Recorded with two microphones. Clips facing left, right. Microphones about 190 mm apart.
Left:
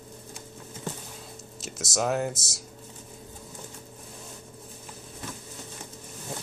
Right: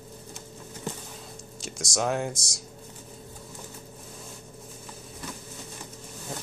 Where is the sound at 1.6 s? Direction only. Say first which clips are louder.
Even; 5° left (ahead or behind).